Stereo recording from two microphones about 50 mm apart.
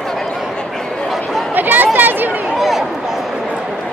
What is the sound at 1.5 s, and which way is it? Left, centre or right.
Chatter, right.